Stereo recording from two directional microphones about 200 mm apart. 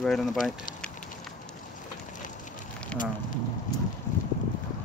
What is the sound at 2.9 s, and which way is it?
Speech, 5° left (ahead or behind).